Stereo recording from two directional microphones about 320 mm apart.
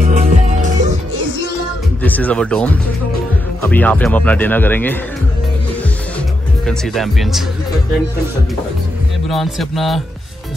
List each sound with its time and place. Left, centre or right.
0.0 s music: right
2.0 s speech: centre
6.6 s speech: centre
9.3 s speech: centre